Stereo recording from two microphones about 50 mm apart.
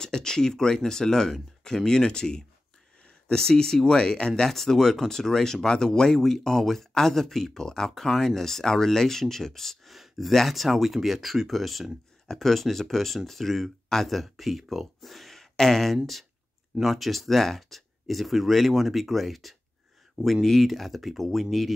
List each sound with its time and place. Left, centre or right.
0.0 s speech: centre
20.4 s speech: centre